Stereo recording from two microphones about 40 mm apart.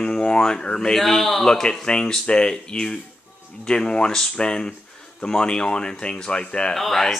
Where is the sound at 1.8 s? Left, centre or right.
Left.